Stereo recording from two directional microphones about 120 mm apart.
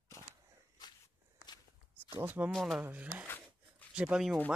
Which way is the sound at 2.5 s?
Centre (ahead or behind).